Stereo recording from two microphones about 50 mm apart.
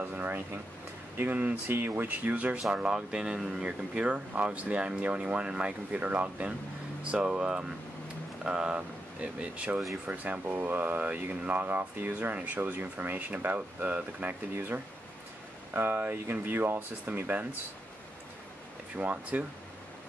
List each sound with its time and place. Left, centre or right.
0.0 s speech: right
1.7 s speech: right
2.0 s speech: right
2.7 s speech: centre
3.9 s speech: right
10.4 s speech: right
14.5 s speech: right
18.9 s speech: right